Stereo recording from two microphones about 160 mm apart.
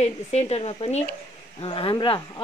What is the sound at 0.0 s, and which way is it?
Speech, 45° left (ahead or behind).